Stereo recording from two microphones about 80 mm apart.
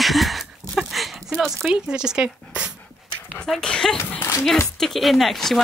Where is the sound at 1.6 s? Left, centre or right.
Centre.